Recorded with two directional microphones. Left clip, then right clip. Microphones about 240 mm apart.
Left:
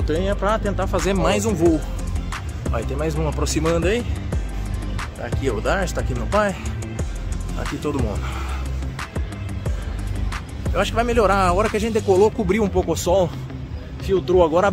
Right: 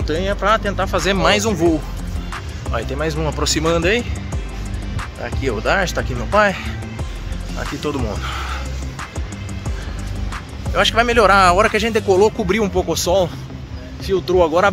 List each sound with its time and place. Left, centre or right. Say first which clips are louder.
0.0 s speech: right 3 dB; centre
5.2 s speech: right 3 dB; centre
7.6 s speech: right 2 dB; centre
10.3 s speech: right 4 dB; centre